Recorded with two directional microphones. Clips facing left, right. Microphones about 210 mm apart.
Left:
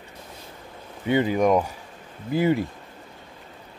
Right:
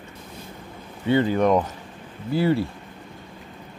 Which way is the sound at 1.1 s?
15° left (ahead or behind).